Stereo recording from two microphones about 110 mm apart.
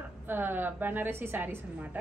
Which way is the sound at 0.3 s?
20° right (ahead or behind).